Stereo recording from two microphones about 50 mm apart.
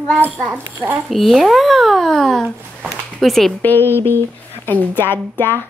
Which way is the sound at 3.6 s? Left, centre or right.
Left.